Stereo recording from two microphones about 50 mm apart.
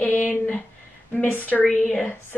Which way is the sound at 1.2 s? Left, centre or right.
Left.